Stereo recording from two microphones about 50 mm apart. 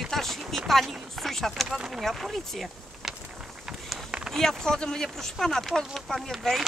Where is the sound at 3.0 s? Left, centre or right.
Centre.